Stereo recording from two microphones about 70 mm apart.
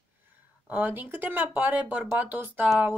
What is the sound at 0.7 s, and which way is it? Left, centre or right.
A woman's voice, right.